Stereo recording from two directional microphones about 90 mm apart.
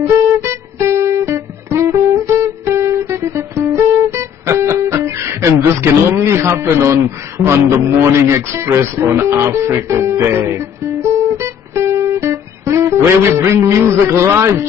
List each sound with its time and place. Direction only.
0.4 s music: 30° right (ahead or behind)
6.2 s a man's voice: 30° right (ahead or behind)
9.9 s music: 30° right (ahead or behind)
12.9 s a man's voice: 30° right (ahead or behind)